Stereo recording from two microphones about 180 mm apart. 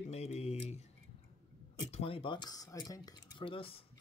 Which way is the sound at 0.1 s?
35° left (ahead or behind).